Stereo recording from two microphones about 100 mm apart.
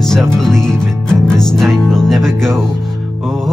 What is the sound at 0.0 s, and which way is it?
Music, 5° left (ahead or behind).